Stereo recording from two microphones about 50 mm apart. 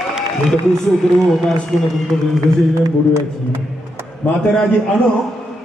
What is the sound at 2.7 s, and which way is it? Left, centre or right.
Speech, right.